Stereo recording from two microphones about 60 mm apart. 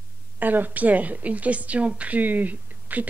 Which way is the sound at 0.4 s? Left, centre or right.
Right.